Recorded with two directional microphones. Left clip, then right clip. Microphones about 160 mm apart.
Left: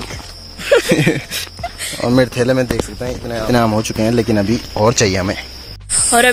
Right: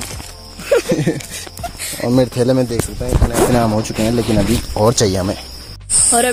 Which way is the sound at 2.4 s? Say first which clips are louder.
Even; 35° right (ahead or behind).